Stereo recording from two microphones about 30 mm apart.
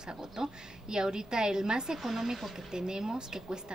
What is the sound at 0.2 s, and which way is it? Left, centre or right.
A woman's voice, right.